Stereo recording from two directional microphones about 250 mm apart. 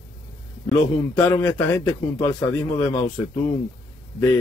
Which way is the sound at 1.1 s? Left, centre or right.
Centre.